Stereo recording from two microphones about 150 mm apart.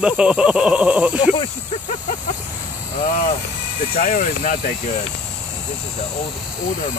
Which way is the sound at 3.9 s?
65° left (ahead or behind).